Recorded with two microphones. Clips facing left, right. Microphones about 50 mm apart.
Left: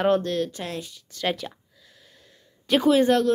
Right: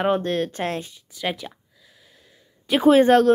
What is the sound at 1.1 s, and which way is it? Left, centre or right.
Speech, centre.